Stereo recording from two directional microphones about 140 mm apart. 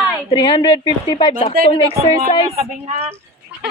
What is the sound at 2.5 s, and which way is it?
Speech, 50° right (ahead or behind).